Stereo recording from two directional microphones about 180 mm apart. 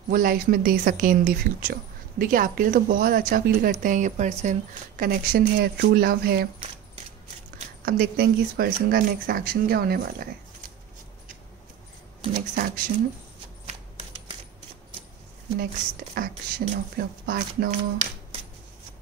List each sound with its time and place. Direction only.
0.1 s speech: 55° right (ahead or behind)
4.9 s speech: 55° right (ahead or behind)
7.8 s speech: 55° right (ahead or behind)
12.2 s speech: 25° right (ahead or behind)
12.5 s speech: 50° right (ahead or behind)
16.2 s speech: 60° right (ahead or behind)